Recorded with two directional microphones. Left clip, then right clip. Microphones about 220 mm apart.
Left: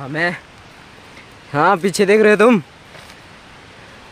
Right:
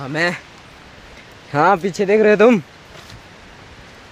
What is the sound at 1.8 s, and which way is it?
Speech, 20° left (ahead or behind).